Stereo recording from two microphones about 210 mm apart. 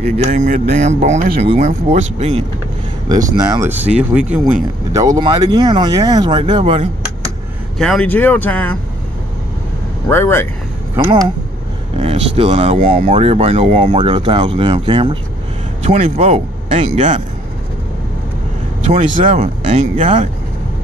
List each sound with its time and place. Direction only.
0.0 s speech: 35° right (ahead or behind)
3.1 s speech: 15° right (ahead or behind)
4.9 s speech: 15° right (ahead or behind)
7.8 s speech: 5° left (ahead or behind)
10.0 s speech: 10° left (ahead or behind)
11.0 s speech: 15° right (ahead or behind)
12.0 s speech: 30° right (ahead or behind)
18.9 s speech: 35° right (ahead or behind)